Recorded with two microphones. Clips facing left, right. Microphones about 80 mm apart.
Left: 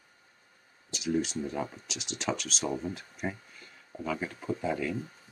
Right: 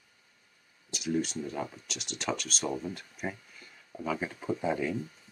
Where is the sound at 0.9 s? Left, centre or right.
Centre.